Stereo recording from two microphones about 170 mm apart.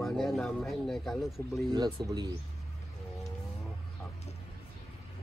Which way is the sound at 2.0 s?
25° right (ahead or behind).